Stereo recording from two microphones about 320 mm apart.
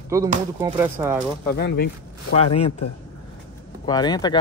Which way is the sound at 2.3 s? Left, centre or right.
Centre.